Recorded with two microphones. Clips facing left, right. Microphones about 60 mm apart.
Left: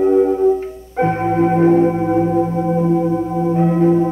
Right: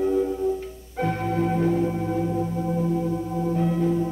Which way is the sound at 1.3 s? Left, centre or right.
Left.